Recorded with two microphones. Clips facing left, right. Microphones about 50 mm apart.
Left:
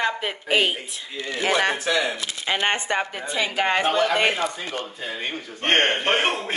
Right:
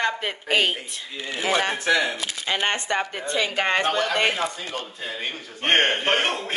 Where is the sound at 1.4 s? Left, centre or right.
Left.